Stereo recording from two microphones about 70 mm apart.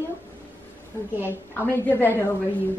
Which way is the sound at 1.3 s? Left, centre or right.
Left.